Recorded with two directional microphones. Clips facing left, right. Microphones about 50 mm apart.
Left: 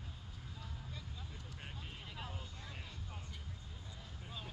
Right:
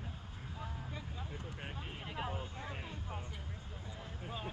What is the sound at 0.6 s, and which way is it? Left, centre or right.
Vehicle, right.